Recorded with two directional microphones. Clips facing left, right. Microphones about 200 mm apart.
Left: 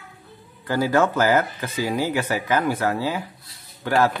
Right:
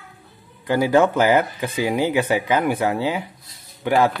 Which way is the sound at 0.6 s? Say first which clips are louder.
Right 3 dB; 15° right (ahead or behind).